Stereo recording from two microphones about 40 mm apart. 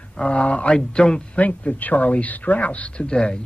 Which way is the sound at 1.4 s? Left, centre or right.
Left.